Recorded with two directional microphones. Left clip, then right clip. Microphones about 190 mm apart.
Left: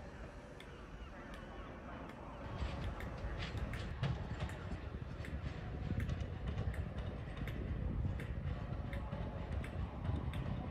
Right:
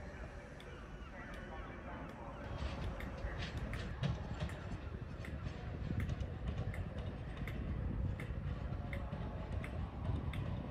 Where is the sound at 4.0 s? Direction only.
5° left (ahead or behind).